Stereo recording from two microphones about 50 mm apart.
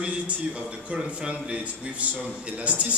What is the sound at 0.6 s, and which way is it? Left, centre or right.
A man's voice, right.